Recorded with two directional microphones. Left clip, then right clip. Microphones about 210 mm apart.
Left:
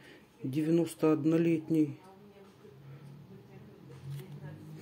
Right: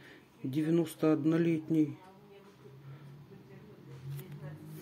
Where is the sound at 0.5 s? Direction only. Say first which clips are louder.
Left 1 dB; centre (ahead or behind).